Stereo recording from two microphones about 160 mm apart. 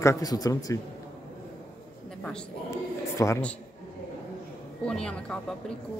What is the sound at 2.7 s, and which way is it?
Speech, 20° left (ahead or behind).